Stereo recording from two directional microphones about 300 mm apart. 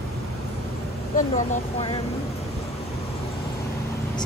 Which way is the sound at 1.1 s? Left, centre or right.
Left.